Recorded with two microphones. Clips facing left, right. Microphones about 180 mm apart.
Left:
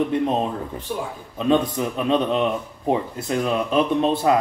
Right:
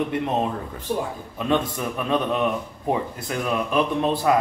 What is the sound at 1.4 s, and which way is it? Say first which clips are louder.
Speech: left 4 dB; 20° left (ahead or behind).